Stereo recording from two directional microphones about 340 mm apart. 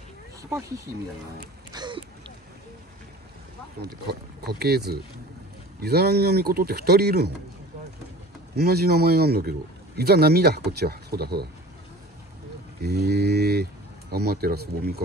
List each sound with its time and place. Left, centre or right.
0.4 s speech: centre
1.7 s a sound: centre
3.8 s a man's voice: right
8.5 s a man's voice: right
12.8 s a man's voice: right